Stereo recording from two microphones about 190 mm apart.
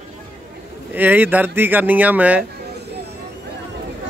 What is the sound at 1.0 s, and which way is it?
A man's voice, 10° right (ahead or behind).